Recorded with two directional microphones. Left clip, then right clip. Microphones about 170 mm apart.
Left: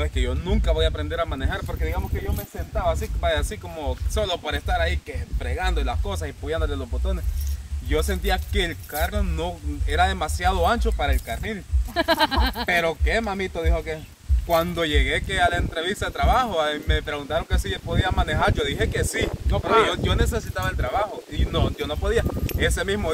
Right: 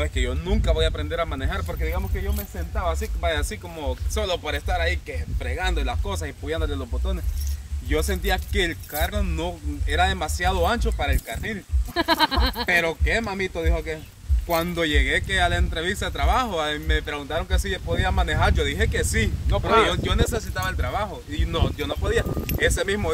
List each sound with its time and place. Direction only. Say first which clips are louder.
0.0 s speech: right 1 dB; 5° right (ahead or behind)
11.9 s a sound: even; 45° left (ahead or behind)
12.6 s speech: right 2 dB; 10° left (ahead or behind)